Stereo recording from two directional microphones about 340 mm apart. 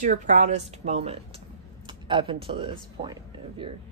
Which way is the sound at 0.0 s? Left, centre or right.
Right.